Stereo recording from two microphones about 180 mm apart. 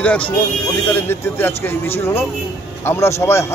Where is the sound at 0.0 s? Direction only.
5° left (ahead or behind).